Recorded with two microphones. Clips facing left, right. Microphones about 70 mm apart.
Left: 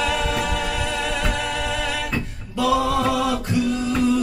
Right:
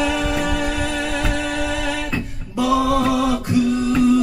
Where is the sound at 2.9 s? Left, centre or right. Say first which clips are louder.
Right 3 dB; centre.